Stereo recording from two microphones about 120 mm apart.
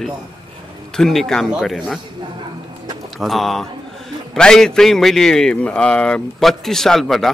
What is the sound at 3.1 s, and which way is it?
A man's voice, centre (ahead or behind).